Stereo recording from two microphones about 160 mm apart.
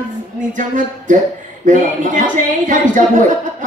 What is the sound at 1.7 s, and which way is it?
A woman's voice, 55° right (ahead or behind).